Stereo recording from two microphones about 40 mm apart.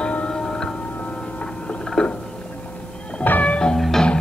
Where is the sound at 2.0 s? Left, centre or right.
Centre.